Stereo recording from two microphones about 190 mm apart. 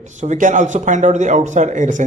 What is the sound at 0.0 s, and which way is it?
A man's voice, 40° right (ahead or behind).